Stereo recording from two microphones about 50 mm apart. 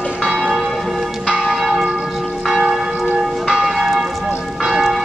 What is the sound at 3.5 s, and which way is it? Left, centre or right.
Church bell, centre.